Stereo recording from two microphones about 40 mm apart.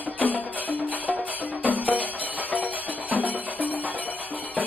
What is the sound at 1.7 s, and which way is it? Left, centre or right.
Music, right.